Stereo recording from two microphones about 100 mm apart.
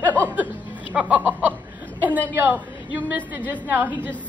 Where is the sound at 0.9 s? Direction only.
15° right (ahead or behind).